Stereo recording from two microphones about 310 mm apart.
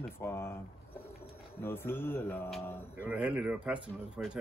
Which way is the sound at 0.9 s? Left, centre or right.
Left.